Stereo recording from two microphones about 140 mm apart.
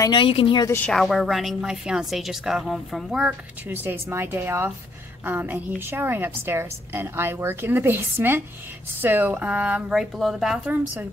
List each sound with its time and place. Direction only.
0.0 s speech: 35° left (ahead or behind)
0.8 s a woman's voice: centre (ahead or behind)